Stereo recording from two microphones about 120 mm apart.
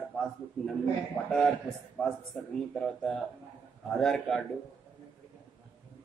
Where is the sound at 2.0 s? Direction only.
5° left (ahead or behind).